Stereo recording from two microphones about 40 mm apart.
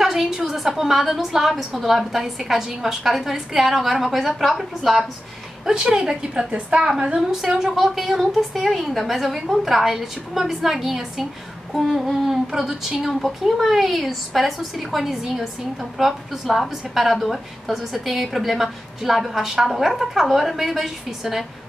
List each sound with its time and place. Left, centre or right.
0.0 s a woman's voice: centre
5.7 s a woman's voice: centre
7.2 s a woman's voice: centre